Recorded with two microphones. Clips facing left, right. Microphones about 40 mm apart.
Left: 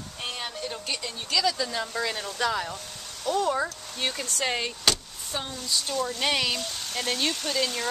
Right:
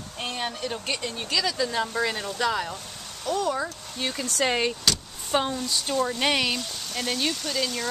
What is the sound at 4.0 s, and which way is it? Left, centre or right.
Speech, centre.